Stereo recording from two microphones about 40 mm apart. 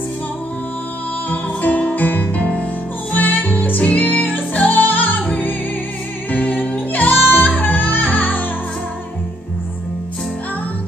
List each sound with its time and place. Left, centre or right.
1.3 s music: left